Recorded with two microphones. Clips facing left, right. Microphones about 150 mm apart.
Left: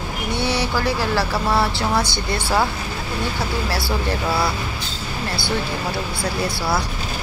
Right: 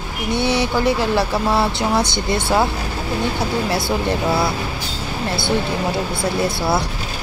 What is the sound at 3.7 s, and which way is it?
Speech, 20° right (ahead or behind).